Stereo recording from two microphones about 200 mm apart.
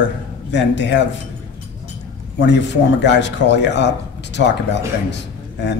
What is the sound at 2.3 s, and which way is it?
A man's voice, 60° left (ahead or behind).